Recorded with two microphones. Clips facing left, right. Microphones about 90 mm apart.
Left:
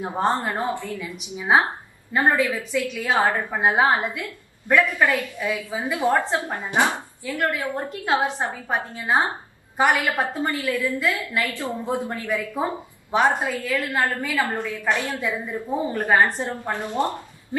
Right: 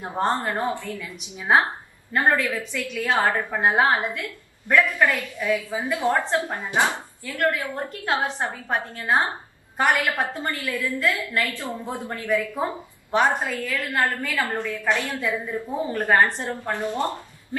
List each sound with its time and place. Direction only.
0.0 s a woman's voice: 15° left (ahead or behind)
8.2 s a woman's voice: 15° left (ahead or behind)
8.6 s a woman's voice: 5° left (ahead or behind)
13.1 s a woman's voice: 5° left (ahead or behind)